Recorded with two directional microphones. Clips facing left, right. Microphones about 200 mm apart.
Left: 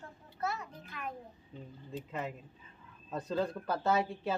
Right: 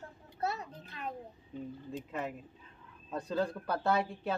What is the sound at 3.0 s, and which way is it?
Speech, centre (ahead or behind).